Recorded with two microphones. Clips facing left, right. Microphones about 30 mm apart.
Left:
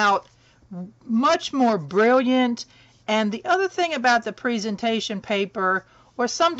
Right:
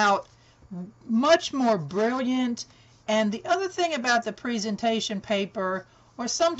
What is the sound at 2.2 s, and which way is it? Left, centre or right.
A woman's voice, left.